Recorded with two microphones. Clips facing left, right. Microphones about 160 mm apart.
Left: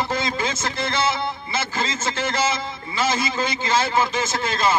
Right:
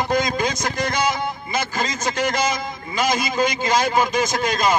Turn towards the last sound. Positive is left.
turn(degrees=-15)  # may be behind; listen again after turning